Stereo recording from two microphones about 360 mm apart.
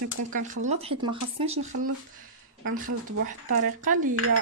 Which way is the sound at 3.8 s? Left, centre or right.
Right.